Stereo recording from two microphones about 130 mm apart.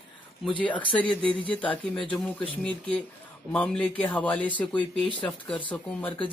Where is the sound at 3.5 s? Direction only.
10° left (ahead or behind).